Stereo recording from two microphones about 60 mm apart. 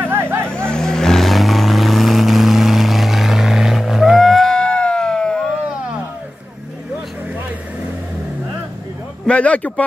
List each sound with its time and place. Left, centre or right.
0.0 s vehicle: right
0.7 s vehicle: centre
9.2 s speech: left